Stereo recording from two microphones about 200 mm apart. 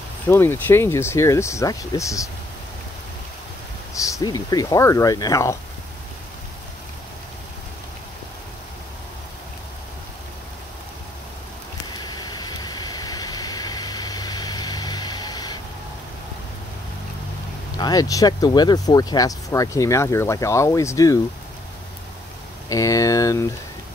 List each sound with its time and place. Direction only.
0.3 s speech: 10° left (ahead or behind)
3.9 s speech: 15° left (ahead or behind)
11.9 s a sound: 20° left (ahead or behind)
17.7 s speech: 20° left (ahead or behind)
22.7 s speech: 15° left (ahead or behind)